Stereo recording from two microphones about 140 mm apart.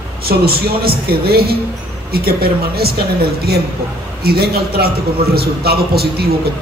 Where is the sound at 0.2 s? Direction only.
90° right.